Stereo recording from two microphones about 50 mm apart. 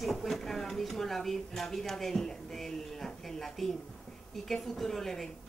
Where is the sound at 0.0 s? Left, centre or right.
Centre.